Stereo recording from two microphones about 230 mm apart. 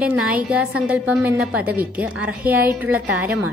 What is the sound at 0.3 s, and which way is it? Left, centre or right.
A woman's voice, centre.